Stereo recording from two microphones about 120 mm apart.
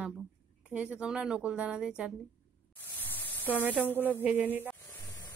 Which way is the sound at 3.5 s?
15° right (ahead or behind).